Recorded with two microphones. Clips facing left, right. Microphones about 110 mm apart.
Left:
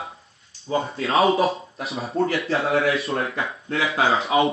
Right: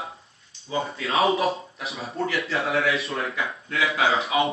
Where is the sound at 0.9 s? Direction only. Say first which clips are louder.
Left 3 dB; 30° left (ahead or behind).